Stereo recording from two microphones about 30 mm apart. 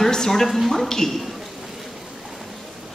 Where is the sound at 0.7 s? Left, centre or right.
Centre.